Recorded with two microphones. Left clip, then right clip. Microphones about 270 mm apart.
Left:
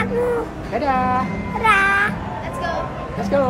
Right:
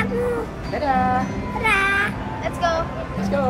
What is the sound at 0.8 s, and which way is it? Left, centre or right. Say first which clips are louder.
Speech: even; left.